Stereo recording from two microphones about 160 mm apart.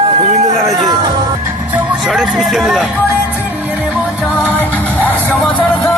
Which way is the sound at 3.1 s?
10° right (ahead or behind).